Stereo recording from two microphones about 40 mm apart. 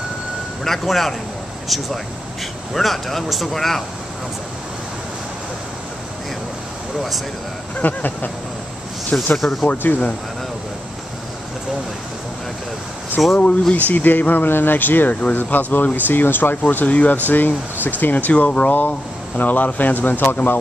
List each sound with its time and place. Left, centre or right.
0.7 s speech: centre
7.8 s speech: left
9.1 s speech: centre
9.8 s speech: left
13.4 s speech: left
13.8 s speech: left
16.8 s speech: left
17.3 s speech: left
18.3 s speech: left
18.7 s speech: left